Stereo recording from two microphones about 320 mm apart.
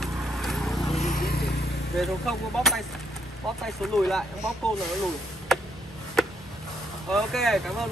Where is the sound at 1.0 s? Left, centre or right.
Left.